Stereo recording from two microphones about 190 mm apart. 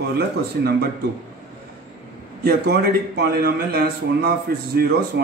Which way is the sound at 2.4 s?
55° right (ahead or behind).